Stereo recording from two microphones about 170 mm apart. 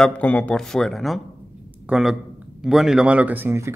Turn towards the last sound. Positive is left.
turn(degrees=-15)  # may be behind; listen again after turning